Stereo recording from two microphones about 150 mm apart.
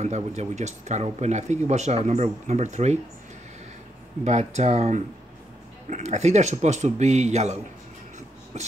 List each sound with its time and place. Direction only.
0.0 s speech: 50° right (ahead or behind)
4.2 s speech: 50° right (ahead or behind)
8.5 s speech: 50° right (ahead or behind)